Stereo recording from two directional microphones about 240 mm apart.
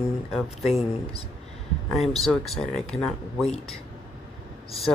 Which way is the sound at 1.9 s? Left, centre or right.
Centre.